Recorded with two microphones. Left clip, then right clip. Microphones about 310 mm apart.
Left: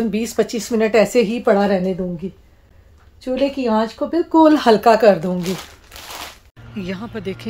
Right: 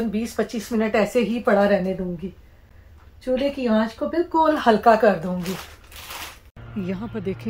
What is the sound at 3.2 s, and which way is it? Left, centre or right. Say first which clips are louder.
Speech: left 3 dB; left.